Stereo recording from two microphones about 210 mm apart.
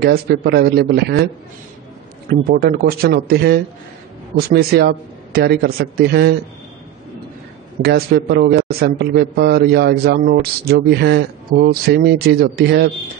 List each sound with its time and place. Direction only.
0.0 s a man's voice: 45° right (ahead or behind)
2.2 s a man's voice: 45° right (ahead or behind)
7.8 s a man's voice: 50° right (ahead or behind)